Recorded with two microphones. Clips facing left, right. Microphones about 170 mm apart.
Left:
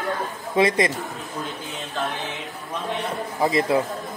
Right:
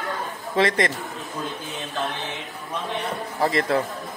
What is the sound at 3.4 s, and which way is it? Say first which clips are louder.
Speech: left 1 dB; 20° left (ahead or behind).